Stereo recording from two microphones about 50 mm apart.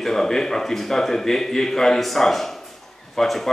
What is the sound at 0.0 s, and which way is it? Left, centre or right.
Speech, centre.